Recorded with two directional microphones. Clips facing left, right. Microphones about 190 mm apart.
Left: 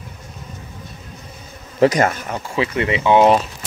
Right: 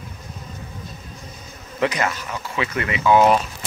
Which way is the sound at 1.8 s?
40° left (ahead or behind).